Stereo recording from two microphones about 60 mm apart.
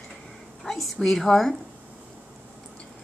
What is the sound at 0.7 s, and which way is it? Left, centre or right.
Speech, centre.